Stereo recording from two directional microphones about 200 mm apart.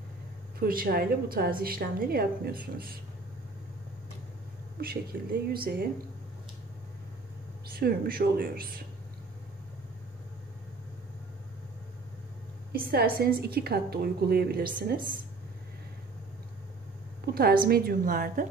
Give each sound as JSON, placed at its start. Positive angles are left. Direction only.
{"t": 0.6, "sound": "a woman's voice", "side_deg": -45}
{"t": 4.7, "sound": "a woman's voice", "side_deg": -50}
{"t": 7.7, "sound": "a woman's voice", "side_deg": -50}
{"t": 12.9, "sound": "a woman's voice", "side_deg": -50}
{"t": 17.2, "sound": "a woman's voice", "side_deg": -50}